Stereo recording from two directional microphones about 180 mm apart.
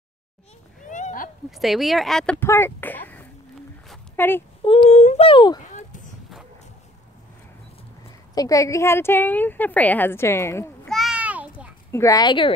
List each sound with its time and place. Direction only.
0.8 s a sound: 45° left (ahead or behind)
1.6 s speech: centre (ahead or behind)
2.4 s a woman's voice: 15° left (ahead or behind)
4.6 s speech: 35° left (ahead or behind)
8.4 s a woman's voice: 20° left (ahead or behind)
10.9 s a sound: centre (ahead or behind)
11.9 s a woman's voice: 20° left (ahead or behind)